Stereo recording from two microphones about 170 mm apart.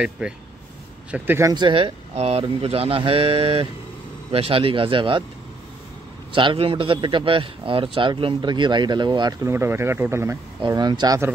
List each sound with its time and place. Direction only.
0.2 s speech: 5° right (ahead or behind)
1.5 s speech: 30° right (ahead or behind)
6.3 s a man's voice: 30° right (ahead or behind)
9.5 s speech: 15° right (ahead or behind)
10.6 s a man's voice: 25° right (ahead or behind)